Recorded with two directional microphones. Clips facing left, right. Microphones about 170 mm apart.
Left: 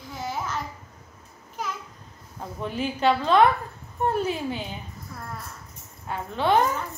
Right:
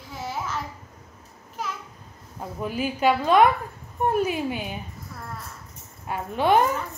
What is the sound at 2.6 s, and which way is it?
A woman's voice, 5° right (ahead or behind).